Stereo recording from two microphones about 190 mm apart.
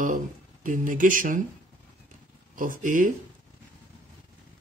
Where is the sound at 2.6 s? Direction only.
45° right (ahead or behind).